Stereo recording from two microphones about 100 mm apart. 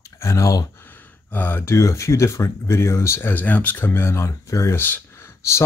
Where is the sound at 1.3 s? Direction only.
20° left (ahead or behind).